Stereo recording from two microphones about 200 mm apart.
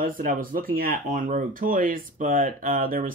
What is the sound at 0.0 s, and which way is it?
Speech, 45° right (ahead or behind).